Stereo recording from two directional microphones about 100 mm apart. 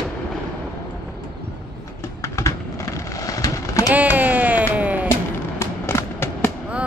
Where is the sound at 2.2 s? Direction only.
30° left (ahead or behind).